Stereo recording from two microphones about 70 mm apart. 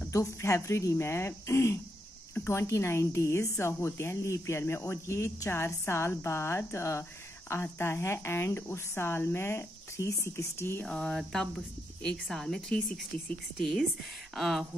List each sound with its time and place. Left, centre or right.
0.1 s a woman's voice: left
10.8 s speech: centre